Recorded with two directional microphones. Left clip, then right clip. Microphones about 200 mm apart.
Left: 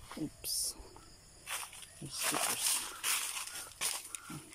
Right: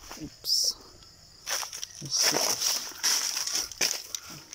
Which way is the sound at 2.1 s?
25° left (ahead or behind).